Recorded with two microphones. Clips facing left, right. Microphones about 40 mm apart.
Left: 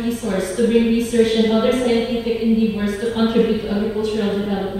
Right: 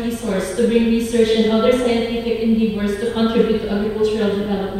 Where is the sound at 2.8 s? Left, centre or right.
Centre.